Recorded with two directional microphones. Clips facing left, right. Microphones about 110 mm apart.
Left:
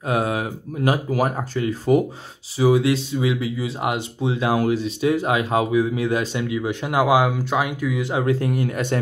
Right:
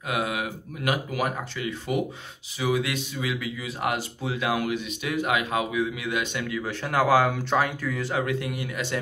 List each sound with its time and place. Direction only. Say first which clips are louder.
0.1 s speech: left 6 dB; 35° left (ahead or behind)
6.5 s speech: left 4 dB; 20° left (ahead or behind)
8.1 s speech: left 7 dB; 30° left (ahead or behind)